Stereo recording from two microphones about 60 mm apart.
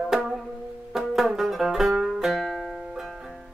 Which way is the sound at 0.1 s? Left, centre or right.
Centre.